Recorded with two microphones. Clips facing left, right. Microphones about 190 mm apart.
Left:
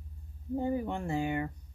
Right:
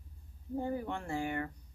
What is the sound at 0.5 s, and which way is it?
Speech, 20° left (ahead or behind).